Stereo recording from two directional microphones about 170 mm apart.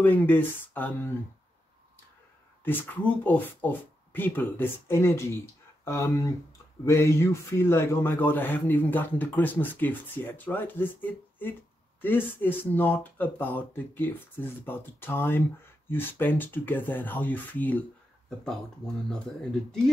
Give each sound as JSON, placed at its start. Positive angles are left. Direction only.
{"t": 0.0, "sound": "a man's voice", "side_deg": 10}
{"t": 2.6, "sound": "a man's voice", "side_deg": 10}
{"t": 19.0, "sound": "speech", "side_deg": 5}